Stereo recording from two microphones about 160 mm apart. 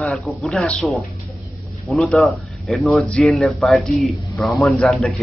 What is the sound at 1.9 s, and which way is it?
Speech, centre (ahead or behind).